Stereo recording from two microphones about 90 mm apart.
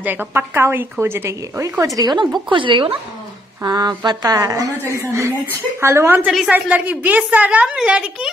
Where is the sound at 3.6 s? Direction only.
50° right (ahead or behind).